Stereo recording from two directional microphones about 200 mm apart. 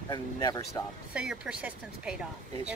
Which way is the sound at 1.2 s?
5° right (ahead or behind).